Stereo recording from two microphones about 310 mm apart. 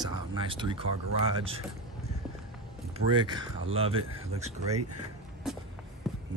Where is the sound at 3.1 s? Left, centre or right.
Centre.